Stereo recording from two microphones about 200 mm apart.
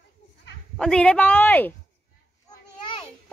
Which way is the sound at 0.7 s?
5° left (ahead or behind).